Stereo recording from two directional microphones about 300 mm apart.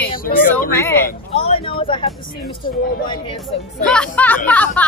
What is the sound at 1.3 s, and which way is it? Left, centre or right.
Speech, centre.